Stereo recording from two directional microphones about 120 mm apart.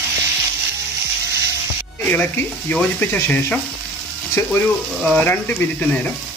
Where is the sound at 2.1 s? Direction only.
15° left (ahead or behind).